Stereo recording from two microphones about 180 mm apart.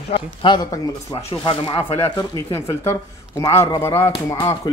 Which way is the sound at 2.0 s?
10° left (ahead or behind).